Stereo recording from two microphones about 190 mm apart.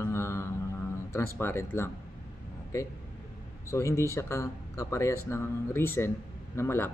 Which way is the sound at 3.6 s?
15° left (ahead or behind).